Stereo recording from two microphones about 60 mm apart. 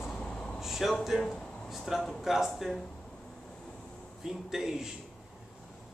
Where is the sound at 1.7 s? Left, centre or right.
Centre.